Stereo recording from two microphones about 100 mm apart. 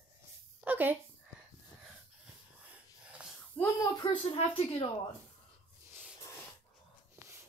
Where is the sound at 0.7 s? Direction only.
20° right (ahead or behind).